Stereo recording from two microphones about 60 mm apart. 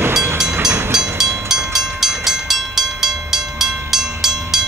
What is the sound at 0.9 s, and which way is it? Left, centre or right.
Train, centre.